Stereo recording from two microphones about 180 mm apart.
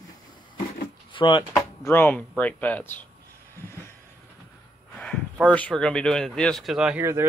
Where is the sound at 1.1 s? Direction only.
25° left (ahead or behind).